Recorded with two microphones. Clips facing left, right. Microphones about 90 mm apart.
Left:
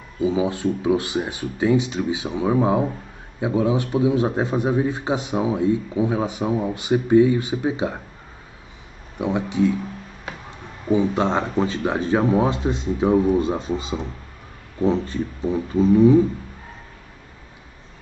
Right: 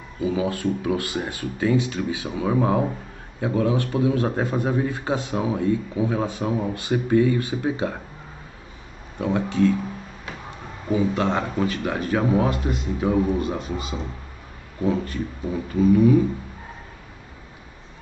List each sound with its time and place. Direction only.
0.2 s a man's voice: 20° left (ahead or behind)
9.2 s a man's voice: 15° left (ahead or behind)
10.9 s speech: 20° left (ahead or behind)